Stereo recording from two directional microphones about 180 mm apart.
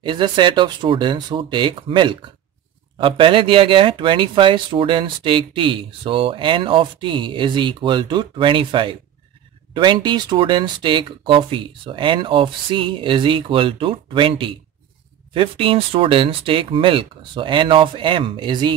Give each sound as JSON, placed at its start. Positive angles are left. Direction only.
{"t": 0.0, "sound": "speech", "side_deg": -25}